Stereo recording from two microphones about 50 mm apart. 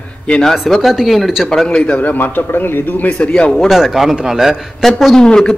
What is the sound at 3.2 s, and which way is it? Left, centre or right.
Speech, left.